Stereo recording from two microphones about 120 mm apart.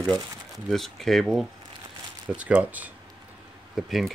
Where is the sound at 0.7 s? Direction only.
Centre (ahead or behind).